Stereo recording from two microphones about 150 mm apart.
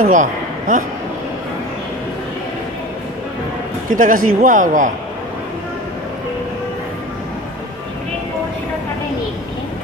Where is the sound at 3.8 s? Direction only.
60° right (ahead or behind).